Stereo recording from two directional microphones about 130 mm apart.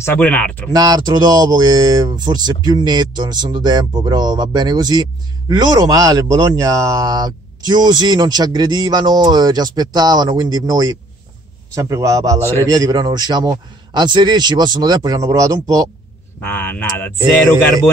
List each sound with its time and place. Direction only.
0.0 s speech: 10° left (ahead or behind)
0.7 s a man's voice: 30° right (ahead or behind)
16.3 s speech: 15° left (ahead or behind)